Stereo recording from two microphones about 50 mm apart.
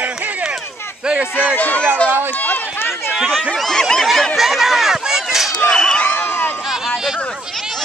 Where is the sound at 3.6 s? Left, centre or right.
Centre.